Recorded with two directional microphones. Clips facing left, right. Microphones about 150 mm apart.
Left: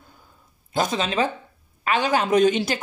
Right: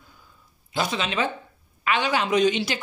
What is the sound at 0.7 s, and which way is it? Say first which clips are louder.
Speech: left 3 dB; 45° left (ahead or behind).